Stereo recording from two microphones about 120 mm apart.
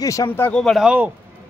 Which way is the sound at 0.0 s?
30° left (ahead or behind).